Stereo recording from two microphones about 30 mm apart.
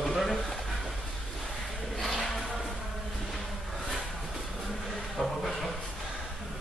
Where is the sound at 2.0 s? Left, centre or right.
Centre.